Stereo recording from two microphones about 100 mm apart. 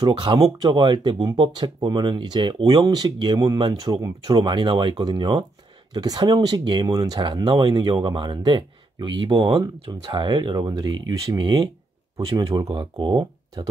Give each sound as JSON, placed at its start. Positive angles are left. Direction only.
{"t": 0.0, "sound": "speech", "side_deg": -50}